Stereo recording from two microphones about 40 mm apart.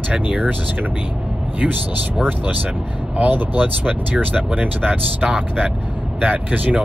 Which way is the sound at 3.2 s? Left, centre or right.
Right.